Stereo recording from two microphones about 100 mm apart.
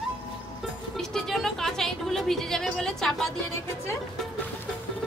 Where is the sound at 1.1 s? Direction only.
5° left (ahead or behind).